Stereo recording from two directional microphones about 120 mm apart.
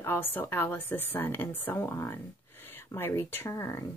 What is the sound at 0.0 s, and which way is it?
Speech, 20° left (ahead or behind).